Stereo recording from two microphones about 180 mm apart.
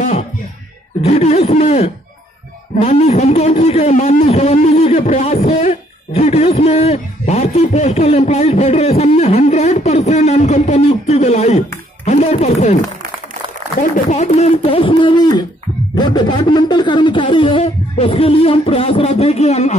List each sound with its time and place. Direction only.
1.0 s a man's voice: 35° left (ahead or behind)
13.7 s a man's voice: 45° left (ahead or behind)